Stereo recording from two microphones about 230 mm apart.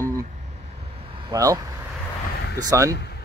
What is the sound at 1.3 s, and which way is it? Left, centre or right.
Speech, centre.